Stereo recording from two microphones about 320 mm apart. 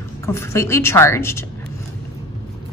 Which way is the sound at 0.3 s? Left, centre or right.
Centre.